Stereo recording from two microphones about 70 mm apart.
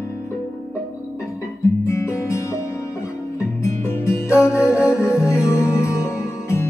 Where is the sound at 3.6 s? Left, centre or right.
Left.